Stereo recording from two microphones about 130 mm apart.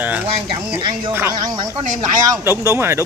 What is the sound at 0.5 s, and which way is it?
Speech, 35° right (ahead or behind).